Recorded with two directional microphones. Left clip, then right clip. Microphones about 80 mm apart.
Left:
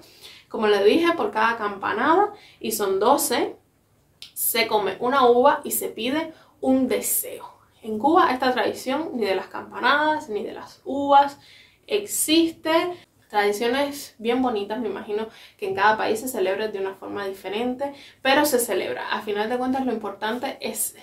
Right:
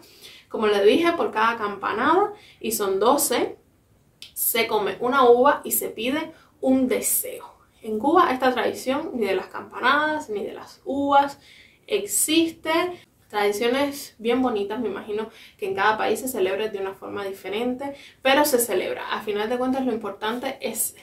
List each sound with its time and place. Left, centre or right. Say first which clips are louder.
0.5 s a woman's voice: even; left
4.5 s a woman's voice: left 1 dB; left
7.2 s a woman's voice: right 1 dB; left